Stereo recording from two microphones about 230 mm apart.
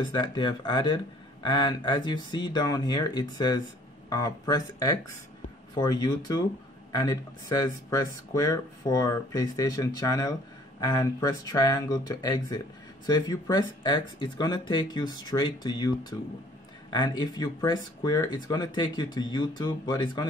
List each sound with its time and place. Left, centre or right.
0.0 s speech: centre